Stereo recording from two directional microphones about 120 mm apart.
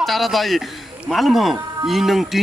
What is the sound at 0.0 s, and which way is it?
Speech, centre (ahead or behind).